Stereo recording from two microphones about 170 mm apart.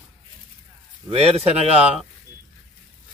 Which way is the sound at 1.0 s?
35° right (ahead or behind).